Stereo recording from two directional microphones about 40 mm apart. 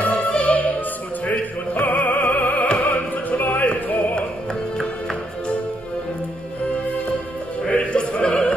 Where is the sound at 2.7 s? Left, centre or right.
Left.